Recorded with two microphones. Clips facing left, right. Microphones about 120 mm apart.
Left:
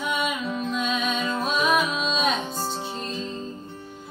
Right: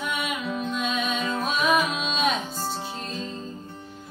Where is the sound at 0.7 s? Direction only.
Centre (ahead or behind).